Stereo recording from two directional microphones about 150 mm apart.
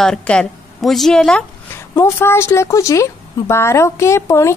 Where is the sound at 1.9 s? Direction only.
15° left (ahead or behind).